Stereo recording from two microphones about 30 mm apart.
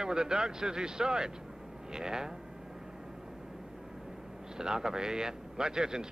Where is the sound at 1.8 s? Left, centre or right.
Right.